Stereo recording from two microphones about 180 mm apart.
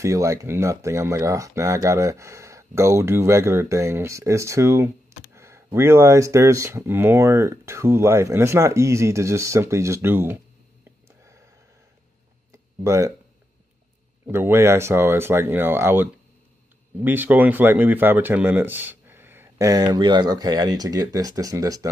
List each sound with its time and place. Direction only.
0.0 s speech: 15° right (ahead or behind)
12.8 s speech: 15° right (ahead or behind)
14.2 s speech: 15° right (ahead or behind)